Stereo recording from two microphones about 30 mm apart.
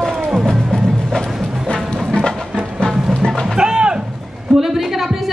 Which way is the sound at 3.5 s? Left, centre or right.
Right.